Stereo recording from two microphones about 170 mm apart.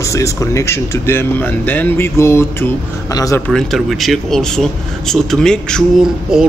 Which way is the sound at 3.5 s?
Centre (ahead or behind).